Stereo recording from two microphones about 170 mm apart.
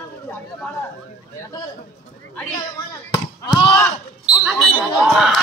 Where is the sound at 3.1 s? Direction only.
25° left (ahead or behind).